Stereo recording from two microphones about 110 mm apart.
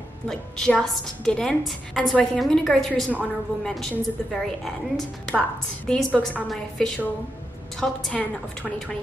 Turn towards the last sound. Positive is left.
turn(degrees=5)  # may be behind; listen again after turning